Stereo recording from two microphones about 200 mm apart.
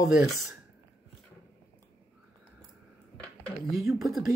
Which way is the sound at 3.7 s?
Centre (ahead or behind).